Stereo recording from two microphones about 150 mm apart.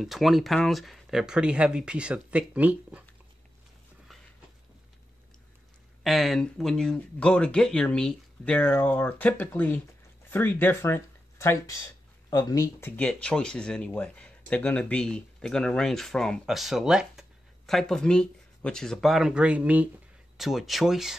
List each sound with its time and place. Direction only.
0.0 s speech: centre (ahead or behind)
6.0 s speech: centre (ahead or behind)